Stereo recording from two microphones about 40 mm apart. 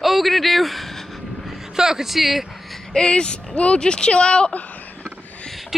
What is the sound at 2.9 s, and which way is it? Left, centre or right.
Speech, left.